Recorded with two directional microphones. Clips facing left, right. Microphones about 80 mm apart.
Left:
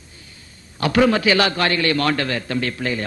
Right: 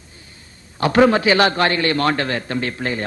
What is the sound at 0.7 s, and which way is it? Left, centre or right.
A man's voice, right.